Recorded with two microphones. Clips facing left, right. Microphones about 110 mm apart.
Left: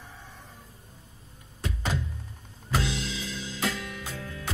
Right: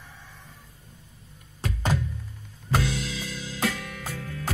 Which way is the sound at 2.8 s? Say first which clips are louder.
Right 2 dB; 30° left (ahead or behind).